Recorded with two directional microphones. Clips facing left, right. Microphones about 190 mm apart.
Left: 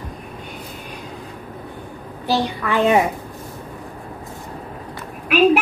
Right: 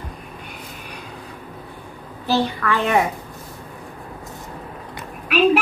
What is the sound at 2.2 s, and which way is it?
Speech, 15° left (ahead or behind).